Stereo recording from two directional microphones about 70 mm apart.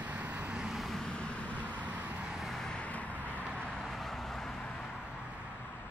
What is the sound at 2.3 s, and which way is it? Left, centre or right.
Vehicle, centre.